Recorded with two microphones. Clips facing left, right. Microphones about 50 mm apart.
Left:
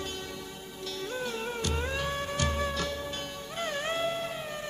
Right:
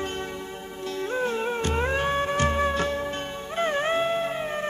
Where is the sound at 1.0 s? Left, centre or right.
Right.